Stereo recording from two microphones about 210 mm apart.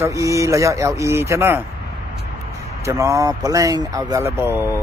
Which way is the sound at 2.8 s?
15° right (ahead or behind).